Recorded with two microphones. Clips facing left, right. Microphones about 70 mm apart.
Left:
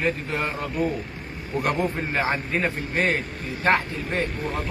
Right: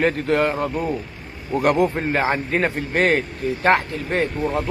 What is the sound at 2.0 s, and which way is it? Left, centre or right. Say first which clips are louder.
Speech: right 4 dB; right.